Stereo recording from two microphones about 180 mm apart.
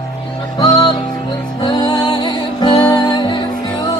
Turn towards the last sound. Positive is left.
turn(degrees=25)  # may be behind; listen again after turning